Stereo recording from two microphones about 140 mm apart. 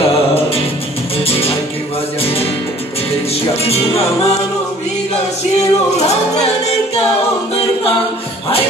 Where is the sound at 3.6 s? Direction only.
45° left (ahead or behind).